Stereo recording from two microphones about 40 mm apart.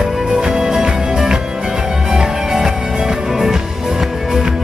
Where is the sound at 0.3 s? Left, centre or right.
Centre.